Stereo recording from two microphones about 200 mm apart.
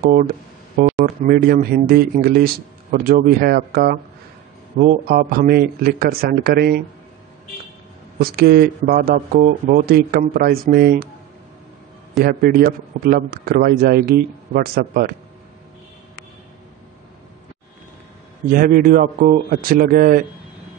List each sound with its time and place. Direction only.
0.0 s a man's voice: 45° right (ahead or behind)
8.2 s a man's voice: 50° right (ahead or behind)
12.2 s a man's voice: 50° right (ahead or behind)
18.5 s a man's voice: 45° right (ahead or behind)